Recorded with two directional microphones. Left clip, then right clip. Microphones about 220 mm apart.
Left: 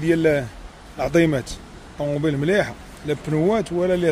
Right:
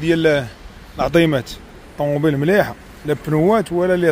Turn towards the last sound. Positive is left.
turn(degrees=-15)  # may be behind; listen again after turning